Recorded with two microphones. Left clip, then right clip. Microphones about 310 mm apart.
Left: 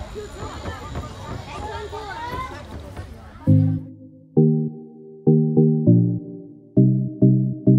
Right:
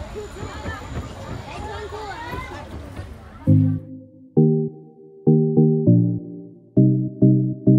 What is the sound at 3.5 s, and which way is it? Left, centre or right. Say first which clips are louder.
Music: right 1 dB; centre.